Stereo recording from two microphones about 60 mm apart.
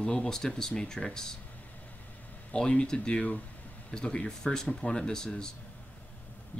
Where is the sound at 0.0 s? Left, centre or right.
Centre.